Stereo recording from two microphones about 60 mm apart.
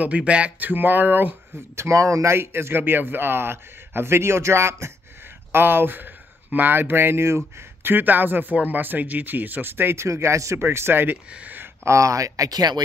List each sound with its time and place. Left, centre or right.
0.0 s speech: right
1.8 s speech: right
2.3 s a man's voice: right
5.5 s speech: right
10.0 s a man's voice: right
11.3 s a sound: right
11.8 s speech: right